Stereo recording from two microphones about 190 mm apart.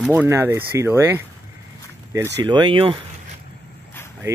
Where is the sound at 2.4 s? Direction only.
25° right (ahead or behind).